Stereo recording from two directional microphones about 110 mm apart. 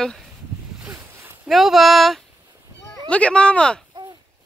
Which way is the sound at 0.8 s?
20° right (ahead or behind).